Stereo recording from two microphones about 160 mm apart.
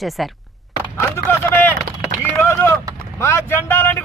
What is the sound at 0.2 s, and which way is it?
Speech, centre (ahead or behind).